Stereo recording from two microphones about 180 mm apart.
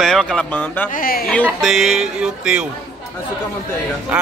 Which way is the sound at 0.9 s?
50° left (ahead or behind).